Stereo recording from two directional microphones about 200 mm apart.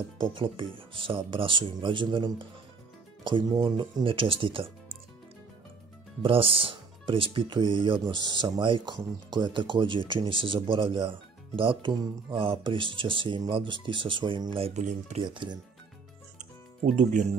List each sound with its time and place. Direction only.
0.2 s speech: 25° right (ahead or behind)
6.2 s speech: 25° right (ahead or behind)
15.2 s speech: 20° right (ahead or behind)
16.8 s speech: 40° right (ahead or behind)